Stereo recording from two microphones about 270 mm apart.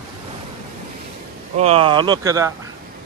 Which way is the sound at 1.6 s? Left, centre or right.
Right.